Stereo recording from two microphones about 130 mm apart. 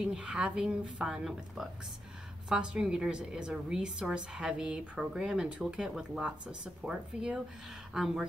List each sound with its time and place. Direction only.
0.0 s a woman's voice: 5° right (ahead or behind)